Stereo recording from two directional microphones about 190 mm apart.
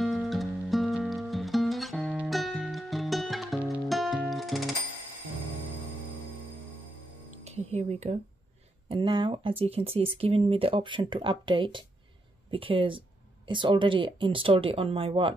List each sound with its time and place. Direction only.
0.0 s music: centre (ahead or behind)
7.4 s music: 35° right (ahead or behind)
8.8 s speech: 25° right (ahead or behind)